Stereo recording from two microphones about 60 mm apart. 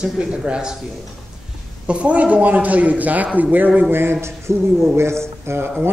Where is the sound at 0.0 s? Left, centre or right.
Centre.